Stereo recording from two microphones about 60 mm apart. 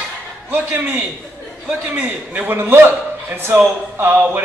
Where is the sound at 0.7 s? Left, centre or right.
Right.